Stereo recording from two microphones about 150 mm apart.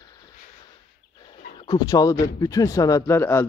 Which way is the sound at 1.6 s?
25° left (ahead or behind).